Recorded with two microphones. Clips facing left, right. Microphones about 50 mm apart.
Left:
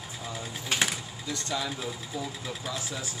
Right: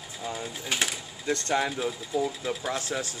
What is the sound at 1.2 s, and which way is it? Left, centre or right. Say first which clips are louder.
Speech: right 7 dB; right.